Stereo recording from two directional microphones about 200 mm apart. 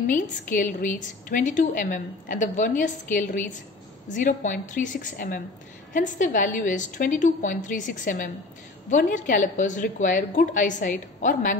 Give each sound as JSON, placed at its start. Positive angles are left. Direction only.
{"t": 0.0, "sound": "a woman's voice", "side_deg": 40}